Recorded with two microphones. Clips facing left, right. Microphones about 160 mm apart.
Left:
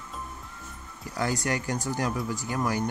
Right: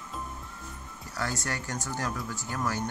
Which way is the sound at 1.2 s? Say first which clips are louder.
Left 5 dB; 15° left (ahead or behind).